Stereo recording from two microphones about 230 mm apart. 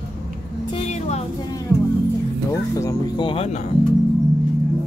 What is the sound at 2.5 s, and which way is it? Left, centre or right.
Music, centre.